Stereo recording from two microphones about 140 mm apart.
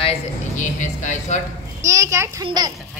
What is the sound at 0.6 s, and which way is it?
Speech, 60° left (ahead or behind).